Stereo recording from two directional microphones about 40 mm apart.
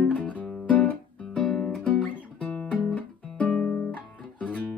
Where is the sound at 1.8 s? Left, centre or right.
Left.